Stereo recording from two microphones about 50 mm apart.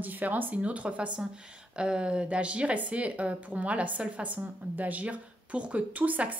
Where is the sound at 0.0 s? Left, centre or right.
Right.